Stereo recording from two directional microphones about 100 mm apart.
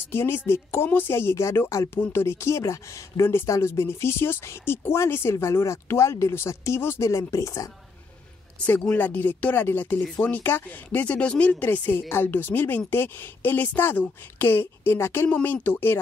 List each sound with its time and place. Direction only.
0.1 s a woman's voice: 25° left (ahead or behind)
8.6 s a woman's voice: 15° left (ahead or behind)